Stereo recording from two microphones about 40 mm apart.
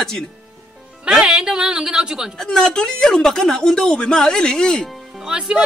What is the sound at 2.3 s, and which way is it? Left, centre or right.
Speech, centre.